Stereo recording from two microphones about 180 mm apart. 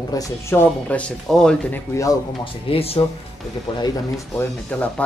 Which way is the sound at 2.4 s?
30° left (ahead or behind).